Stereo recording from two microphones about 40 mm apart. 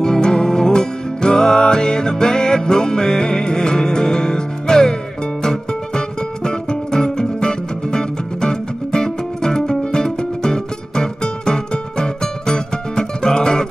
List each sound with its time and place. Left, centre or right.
0.0 s music: centre